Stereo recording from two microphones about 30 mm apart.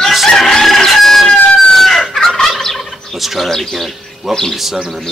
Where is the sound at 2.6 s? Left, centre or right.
Centre.